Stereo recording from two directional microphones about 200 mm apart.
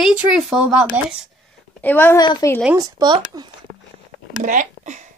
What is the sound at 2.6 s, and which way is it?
Speech, 15° right (ahead or behind).